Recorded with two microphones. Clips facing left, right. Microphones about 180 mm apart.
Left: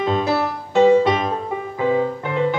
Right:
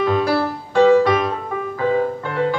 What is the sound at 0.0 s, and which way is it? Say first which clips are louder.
Music: right 2 dB; 20° left (ahead or behind).